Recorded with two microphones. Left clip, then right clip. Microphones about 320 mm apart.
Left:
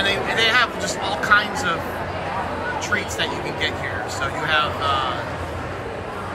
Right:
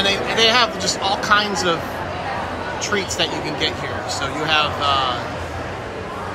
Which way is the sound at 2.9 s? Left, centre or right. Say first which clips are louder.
Right 4 dB; centre.